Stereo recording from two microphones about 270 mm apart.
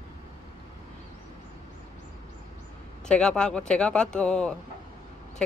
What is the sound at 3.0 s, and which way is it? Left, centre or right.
Speech, centre.